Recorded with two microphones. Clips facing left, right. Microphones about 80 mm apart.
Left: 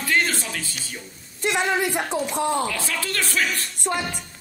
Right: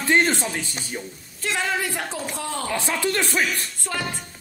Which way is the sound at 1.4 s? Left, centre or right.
Centre.